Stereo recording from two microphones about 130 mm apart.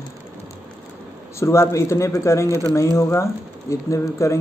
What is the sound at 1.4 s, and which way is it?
Speech, 20° left (ahead or behind).